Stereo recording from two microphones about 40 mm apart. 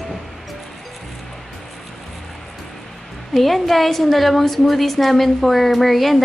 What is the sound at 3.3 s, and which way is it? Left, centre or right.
A woman's voice, centre.